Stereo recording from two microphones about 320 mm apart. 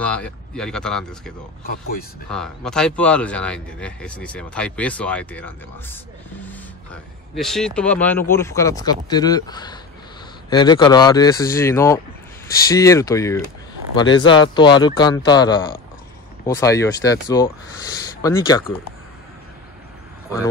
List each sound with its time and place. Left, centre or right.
0.0 s speech: centre
1.6 s speech: left
2.2 s speech: centre